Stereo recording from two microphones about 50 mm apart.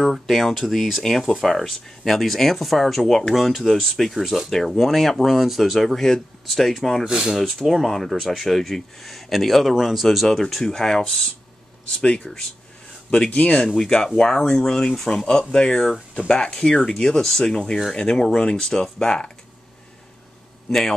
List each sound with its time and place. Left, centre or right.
0.1 s speech: centre
4.5 s speech: centre
7.1 s speech: centre
7.4 s speech: centre
13.3 s speech: left